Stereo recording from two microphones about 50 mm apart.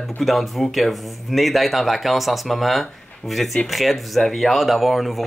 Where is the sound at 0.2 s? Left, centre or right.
Centre.